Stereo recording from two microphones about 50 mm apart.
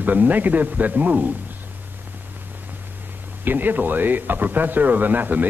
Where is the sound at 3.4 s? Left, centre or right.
Right.